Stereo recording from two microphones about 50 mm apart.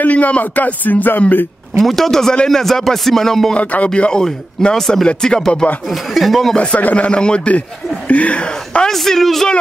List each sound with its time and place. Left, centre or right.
0.0 s music: left
1.9 s speech: centre
3.5 s speech: left
4.2 s speech: centre
5.0 s speech: centre
5.9 s speech: centre
6.5 s speech: left
7.1 s speech: centre
8.9 s speech: centre